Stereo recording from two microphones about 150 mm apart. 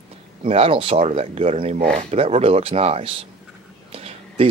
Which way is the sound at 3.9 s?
40° right (ahead or behind).